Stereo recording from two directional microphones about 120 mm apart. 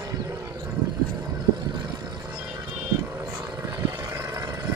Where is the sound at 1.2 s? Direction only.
35° right (ahead or behind).